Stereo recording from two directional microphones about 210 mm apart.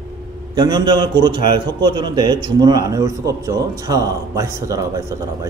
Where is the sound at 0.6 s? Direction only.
20° right (ahead or behind).